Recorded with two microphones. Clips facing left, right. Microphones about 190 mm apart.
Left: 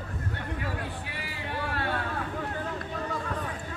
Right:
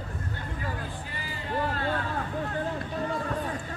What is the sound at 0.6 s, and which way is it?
Music, 70° left (ahead or behind).